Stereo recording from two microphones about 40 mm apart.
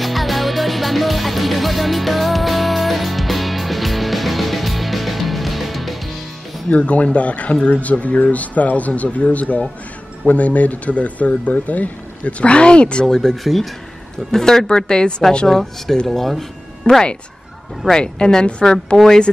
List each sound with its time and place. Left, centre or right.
0.0 s music: centre
6.7 s speech: left
13.0 s a woman's voice: centre
15.4 s speech: centre
17.9 s a woman's voice: left